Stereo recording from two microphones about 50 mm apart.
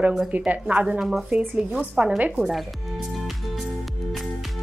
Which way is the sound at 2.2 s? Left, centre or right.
Right.